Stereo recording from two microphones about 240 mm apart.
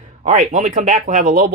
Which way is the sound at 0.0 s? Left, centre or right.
Right.